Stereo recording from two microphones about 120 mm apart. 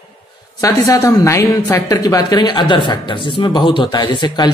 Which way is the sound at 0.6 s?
25° left (ahead or behind).